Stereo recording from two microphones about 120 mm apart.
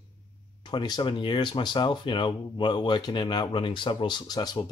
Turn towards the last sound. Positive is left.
turn(degrees=35)  # may be behind; listen again after turning